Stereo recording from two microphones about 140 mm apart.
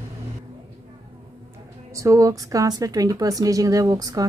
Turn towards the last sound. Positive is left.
turn(degrees=-25)  # may be behind; listen again after turning